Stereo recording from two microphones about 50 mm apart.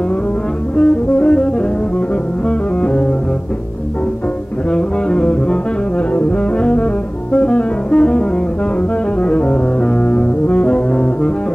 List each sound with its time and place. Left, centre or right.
0.7 s music: left
2.8 s music: left
4.6 s music: left